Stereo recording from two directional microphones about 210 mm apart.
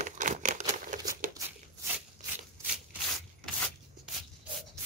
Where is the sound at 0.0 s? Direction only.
35° right (ahead or behind).